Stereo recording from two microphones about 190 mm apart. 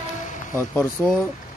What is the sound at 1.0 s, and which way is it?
Speech, 10° left (ahead or behind).